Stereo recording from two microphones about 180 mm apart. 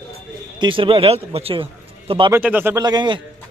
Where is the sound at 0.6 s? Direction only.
30° right (ahead or behind).